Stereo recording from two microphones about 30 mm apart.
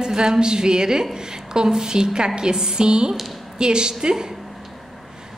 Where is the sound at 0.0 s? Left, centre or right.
Right.